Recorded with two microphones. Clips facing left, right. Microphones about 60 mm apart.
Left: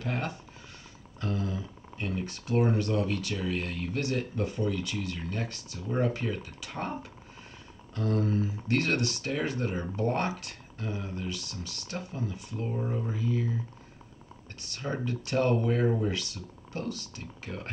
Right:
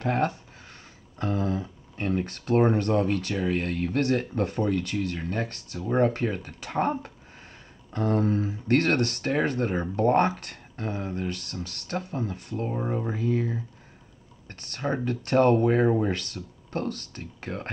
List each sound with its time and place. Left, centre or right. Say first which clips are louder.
0.0 s speech: right 8 dB; right
1.2 s speech: right 6 dB; right
14.6 s speech: right 5 dB; right